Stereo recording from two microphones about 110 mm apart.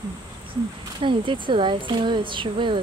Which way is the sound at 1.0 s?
50° right (ahead or behind).